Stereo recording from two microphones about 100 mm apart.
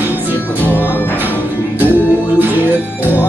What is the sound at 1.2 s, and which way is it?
Music, 20° right (ahead or behind).